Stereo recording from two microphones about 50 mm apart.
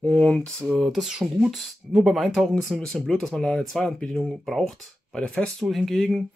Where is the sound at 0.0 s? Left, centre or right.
Left.